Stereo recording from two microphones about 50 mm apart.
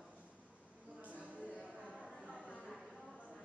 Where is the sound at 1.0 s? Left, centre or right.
Right.